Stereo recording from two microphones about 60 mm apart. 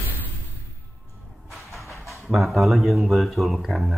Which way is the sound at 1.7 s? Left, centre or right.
Centre.